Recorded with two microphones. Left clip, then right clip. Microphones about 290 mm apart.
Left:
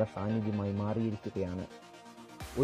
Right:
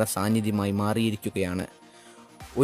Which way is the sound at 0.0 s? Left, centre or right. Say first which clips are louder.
Right 7 dB; right.